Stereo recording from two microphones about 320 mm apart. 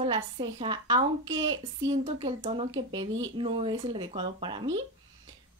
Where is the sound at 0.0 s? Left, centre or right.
Centre.